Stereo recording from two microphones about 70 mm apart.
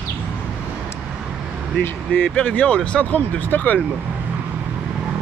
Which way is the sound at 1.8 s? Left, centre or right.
Left.